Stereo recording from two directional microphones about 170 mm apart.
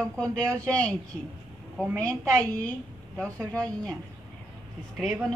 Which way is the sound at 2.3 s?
20° right (ahead or behind).